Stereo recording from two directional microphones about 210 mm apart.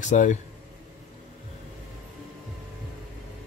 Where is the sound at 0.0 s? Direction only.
35° left (ahead or behind).